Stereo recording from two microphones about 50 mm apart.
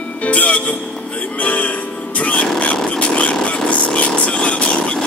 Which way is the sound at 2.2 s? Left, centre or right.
Left.